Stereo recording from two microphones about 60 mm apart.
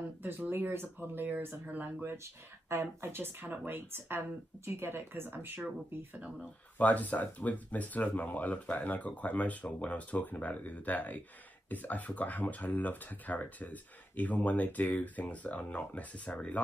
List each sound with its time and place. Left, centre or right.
0.5 s speech: right
2.2 s speech: right
6.8 s speech: left